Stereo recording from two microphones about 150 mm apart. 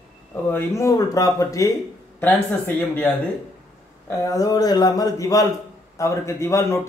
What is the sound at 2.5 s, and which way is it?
Speech, centre (ahead or behind).